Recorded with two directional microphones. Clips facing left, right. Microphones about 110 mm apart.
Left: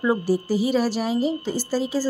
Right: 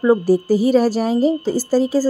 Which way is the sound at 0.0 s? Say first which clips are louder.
Right 7 dB; 40° right (ahead or behind).